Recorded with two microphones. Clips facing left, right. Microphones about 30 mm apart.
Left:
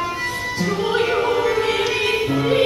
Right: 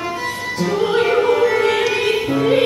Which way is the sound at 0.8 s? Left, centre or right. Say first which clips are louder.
Right 4 dB; centre.